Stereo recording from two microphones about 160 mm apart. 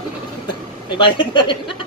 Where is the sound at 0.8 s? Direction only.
30° left (ahead or behind).